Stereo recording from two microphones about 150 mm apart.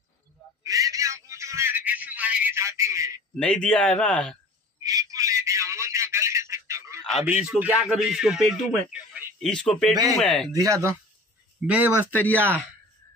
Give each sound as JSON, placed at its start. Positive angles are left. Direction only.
{"t": 0.7, "sound": "telephone", "side_deg": -20}
{"t": 3.3, "sound": "a man's voice", "side_deg": 5}
{"t": 4.8, "sound": "telephone", "side_deg": -20}
{"t": 7.2, "sound": "a man's voice", "side_deg": -10}
{"t": 9.5, "sound": "a man's voice", "side_deg": 5}
{"t": 10.5, "sound": "speech", "side_deg": -20}
{"t": 11.6, "sound": "speech", "side_deg": -10}
{"t": 12.3, "sound": "speech", "side_deg": 10}